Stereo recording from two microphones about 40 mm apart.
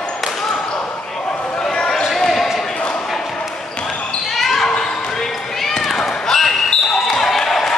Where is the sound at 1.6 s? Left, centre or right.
Centre.